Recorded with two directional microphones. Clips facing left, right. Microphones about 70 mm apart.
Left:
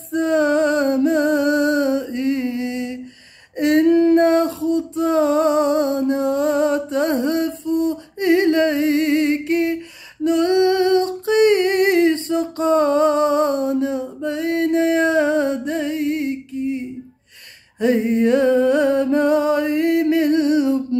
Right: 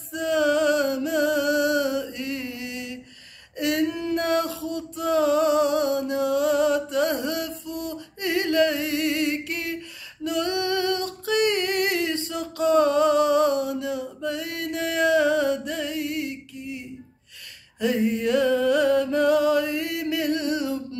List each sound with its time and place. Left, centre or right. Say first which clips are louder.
0.1 s music: left 5 dB; left
3.5 s a sound: left 10 dB; left
4.2 s music: left 8 dB; left
10.2 s humming: left 10 dB; left
17.7 s music: left 6 dB; left